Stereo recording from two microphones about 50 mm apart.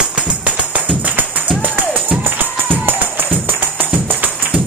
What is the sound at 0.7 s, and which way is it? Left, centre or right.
Music, right.